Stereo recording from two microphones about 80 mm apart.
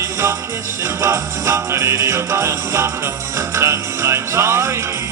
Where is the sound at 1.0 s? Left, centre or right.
Right.